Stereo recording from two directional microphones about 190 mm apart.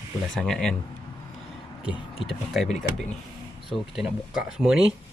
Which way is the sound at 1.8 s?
25° left (ahead or behind).